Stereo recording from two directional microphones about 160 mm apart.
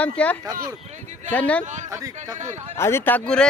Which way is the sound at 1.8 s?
20° right (ahead or behind).